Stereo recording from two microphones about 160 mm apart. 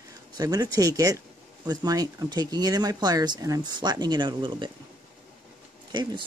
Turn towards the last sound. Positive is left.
turn(degrees=-30)  # may be behind; listen again after turning